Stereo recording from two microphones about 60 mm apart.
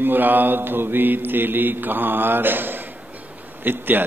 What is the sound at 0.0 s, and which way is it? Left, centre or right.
A man's voice, right.